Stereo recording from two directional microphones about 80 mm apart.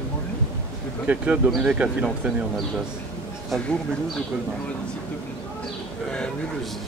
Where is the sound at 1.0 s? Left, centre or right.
Centre.